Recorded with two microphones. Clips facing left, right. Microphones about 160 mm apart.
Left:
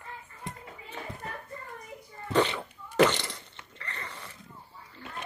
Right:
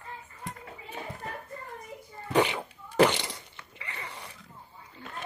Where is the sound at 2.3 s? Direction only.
10° right (ahead or behind).